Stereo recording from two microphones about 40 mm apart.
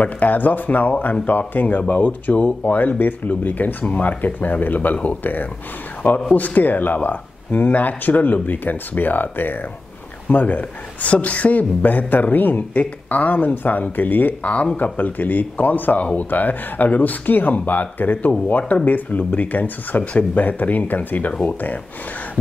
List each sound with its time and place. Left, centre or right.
0.0 s speech: left
14.4 s speech: left